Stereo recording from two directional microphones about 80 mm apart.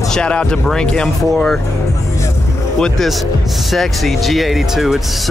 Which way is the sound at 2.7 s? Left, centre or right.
Centre.